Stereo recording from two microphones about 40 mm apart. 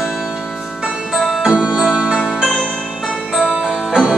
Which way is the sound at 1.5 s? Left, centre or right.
Right.